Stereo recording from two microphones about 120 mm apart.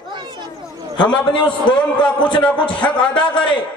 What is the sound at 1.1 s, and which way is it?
Speech, 40° left (ahead or behind).